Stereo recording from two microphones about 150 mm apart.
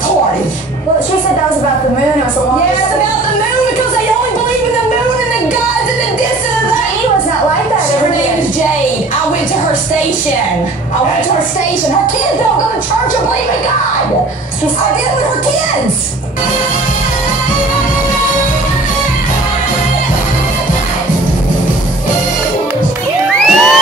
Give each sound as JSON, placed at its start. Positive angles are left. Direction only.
{"t": 23.3, "sound": "music", "side_deg": 5}